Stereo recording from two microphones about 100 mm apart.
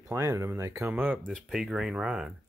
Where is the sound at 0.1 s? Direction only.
30° right (ahead or behind).